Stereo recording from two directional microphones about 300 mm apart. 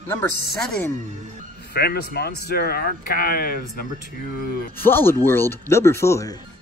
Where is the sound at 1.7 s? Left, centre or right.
Left.